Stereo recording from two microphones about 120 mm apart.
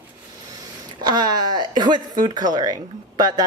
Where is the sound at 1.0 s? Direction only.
35° right (ahead or behind).